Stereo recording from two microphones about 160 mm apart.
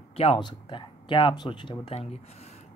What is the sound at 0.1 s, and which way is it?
Speech, 35° left (ahead or behind).